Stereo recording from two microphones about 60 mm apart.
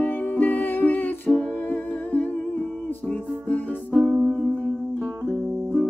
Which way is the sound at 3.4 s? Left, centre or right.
Left.